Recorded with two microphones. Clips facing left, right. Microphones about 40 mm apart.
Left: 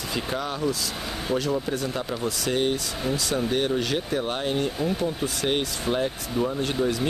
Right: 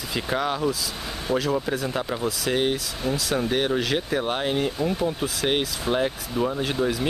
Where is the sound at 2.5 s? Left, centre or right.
Right.